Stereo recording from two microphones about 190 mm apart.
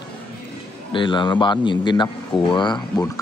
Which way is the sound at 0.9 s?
25° left (ahead or behind).